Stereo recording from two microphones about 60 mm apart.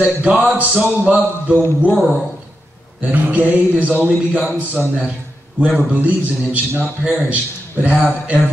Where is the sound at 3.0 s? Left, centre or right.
Right.